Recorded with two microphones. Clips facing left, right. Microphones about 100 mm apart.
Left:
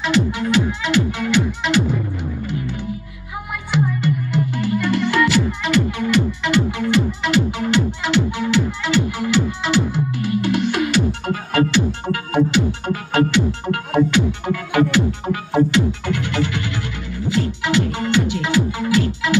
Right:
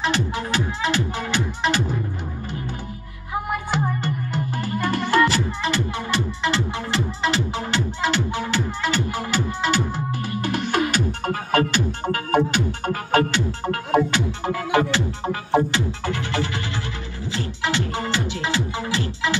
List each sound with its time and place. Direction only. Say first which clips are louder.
0.0 s music: left 5 dB; 35° right (ahead or behind)
3.7 s music: left 8 dB; 40° right (ahead or behind)